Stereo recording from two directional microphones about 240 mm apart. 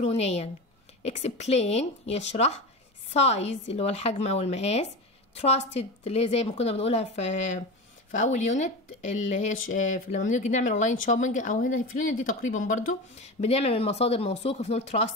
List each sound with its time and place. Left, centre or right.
0.0 s a woman's voice: left